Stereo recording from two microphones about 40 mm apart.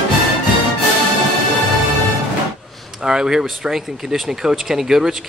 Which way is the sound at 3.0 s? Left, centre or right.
Centre.